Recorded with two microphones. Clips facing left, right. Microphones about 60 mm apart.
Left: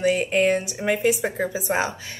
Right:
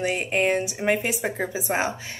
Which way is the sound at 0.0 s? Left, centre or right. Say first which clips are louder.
Left 4 dB; right.